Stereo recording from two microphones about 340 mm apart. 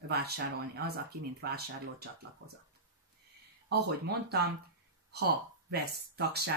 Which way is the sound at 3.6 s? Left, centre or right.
Right.